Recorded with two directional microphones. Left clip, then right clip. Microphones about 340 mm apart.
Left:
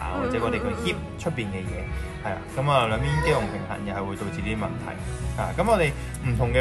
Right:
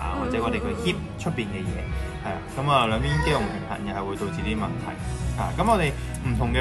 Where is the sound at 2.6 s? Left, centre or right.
Left.